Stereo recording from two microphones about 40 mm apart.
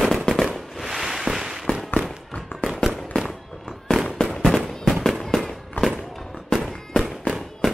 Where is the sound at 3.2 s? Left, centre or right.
Centre.